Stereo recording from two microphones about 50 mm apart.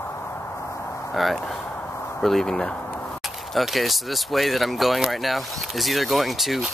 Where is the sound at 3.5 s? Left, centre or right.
Centre.